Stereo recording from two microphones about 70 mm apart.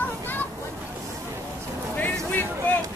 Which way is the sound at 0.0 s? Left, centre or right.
Left.